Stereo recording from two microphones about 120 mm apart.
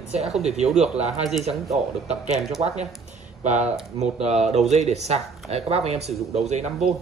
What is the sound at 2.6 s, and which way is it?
Speech, 65° right (ahead or behind).